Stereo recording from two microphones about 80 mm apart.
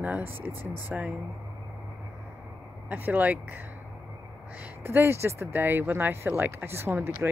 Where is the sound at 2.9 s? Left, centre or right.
Right.